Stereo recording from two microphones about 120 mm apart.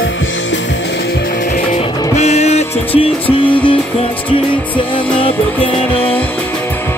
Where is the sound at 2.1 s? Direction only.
65° left (ahead or behind).